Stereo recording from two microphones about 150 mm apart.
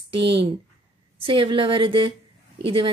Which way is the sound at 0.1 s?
35° right (ahead or behind).